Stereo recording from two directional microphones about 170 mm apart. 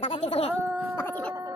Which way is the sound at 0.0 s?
35° left (ahead or behind).